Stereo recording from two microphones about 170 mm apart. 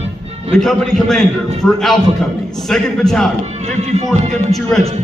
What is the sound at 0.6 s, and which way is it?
A man's voice, centre (ahead or behind).